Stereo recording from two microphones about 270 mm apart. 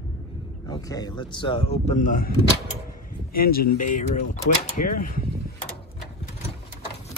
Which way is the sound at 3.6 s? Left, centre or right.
Left.